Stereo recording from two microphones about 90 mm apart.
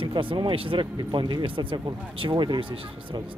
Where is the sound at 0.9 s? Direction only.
60° right (ahead or behind).